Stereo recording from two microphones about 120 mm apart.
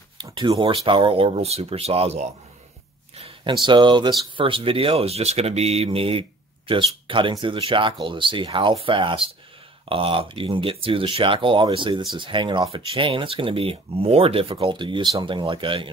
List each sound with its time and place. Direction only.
0.2 s speech: 40° right (ahead or behind); by 2.2 s 60° right (ahead or behind)
3.2 s speech: 45° right (ahead or behind)